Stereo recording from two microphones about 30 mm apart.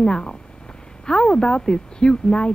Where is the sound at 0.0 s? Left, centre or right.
Left.